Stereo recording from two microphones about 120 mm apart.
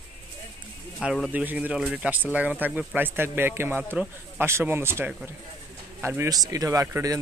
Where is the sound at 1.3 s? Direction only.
15° right (ahead or behind).